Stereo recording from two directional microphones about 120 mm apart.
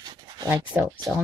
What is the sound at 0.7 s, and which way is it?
Speech, 5° right (ahead or behind).